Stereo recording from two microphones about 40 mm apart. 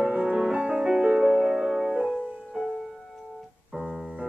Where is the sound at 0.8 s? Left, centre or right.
Centre.